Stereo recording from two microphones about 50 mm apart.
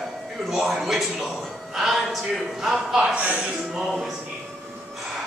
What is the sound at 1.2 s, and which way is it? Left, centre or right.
A man's voice, centre.